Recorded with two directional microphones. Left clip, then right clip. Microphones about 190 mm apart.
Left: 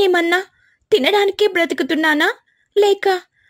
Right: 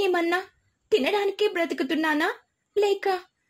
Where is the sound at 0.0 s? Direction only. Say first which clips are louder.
Left 9 dB; 35° left (ahead or behind).